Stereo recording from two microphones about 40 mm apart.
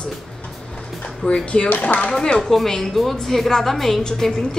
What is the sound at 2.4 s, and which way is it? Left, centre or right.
A woman's voice, centre.